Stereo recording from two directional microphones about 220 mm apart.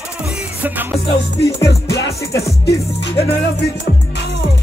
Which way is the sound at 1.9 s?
50° left (ahead or behind).